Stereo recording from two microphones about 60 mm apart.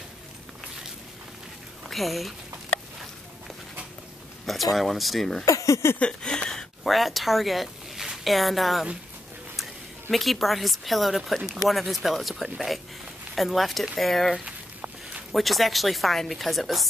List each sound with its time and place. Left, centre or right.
1.9 s speech: centre
4.7 s speech: centre
5.4 s speech: left
5.9 s a sound: centre
6.8 s speech: centre
10.1 s speech: centre
14.4 s a sound: right
15.3 s speech: centre